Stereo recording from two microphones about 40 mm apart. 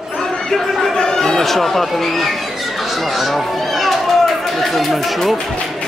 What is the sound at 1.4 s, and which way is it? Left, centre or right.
Speech, centre.